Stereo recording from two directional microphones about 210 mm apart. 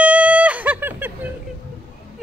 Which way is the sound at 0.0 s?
5° right (ahead or behind).